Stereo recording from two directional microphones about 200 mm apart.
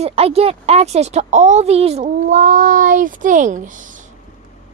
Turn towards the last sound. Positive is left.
turn(degrees=-40)  # may be behind; listen again after turning